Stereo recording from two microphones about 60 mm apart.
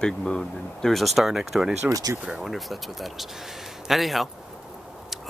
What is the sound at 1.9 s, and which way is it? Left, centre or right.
Speech, right.